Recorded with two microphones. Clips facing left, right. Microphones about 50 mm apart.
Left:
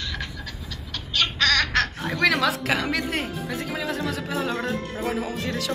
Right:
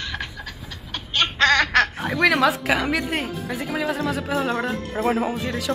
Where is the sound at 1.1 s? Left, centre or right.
Right.